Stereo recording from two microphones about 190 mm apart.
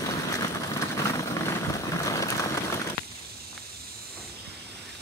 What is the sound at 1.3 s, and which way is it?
Vehicle, 15° left (ahead or behind).